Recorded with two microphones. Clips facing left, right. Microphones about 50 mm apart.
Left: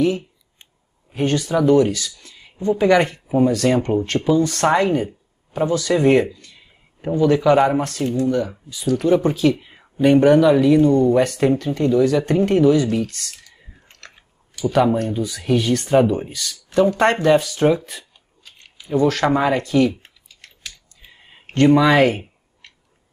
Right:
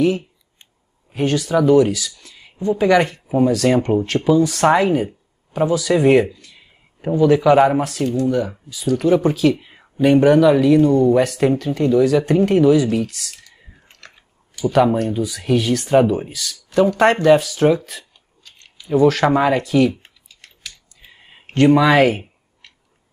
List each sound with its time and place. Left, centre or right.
1.1 s speech: centre
18.4 s a sound: centre
18.9 s speech: centre
20.6 s clicking: centre